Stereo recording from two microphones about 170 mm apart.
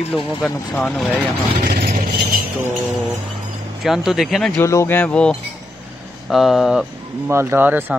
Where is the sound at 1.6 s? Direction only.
55° right (ahead or behind).